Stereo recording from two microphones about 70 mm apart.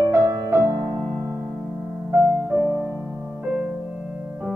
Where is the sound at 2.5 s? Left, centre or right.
Right.